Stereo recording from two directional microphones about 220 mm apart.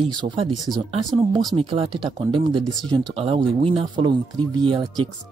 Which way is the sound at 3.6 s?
25° right (ahead or behind).